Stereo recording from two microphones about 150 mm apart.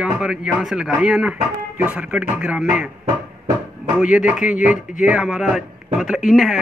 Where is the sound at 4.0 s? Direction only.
5° right (ahead or behind).